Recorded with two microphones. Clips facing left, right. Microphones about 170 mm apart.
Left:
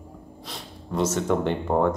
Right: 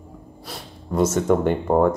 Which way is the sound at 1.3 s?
50° right (ahead or behind).